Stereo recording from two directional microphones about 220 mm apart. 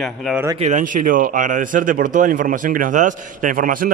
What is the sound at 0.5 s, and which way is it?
Speech, 35° right (ahead or behind).